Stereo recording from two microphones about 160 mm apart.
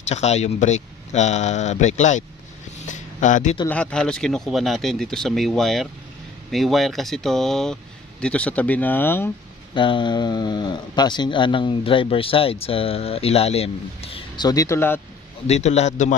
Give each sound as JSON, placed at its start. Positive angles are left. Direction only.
{"t": 0.0, "sound": "speech", "side_deg": 45}
{"t": 3.6, "sound": "speech", "side_deg": 5}
{"t": 9.8, "sound": "speech", "side_deg": 30}
{"t": 15.4, "sound": "speech", "side_deg": 45}